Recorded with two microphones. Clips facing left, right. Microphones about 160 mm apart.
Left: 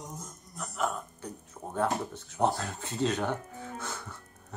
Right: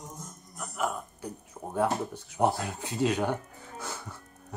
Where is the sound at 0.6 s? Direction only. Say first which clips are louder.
Even; 5° right (ahead or behind).